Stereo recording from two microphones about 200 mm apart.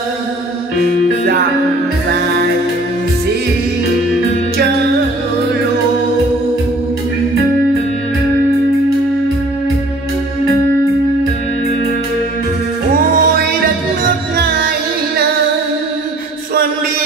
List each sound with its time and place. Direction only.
12.9 s music: 45° right (ahead or behind)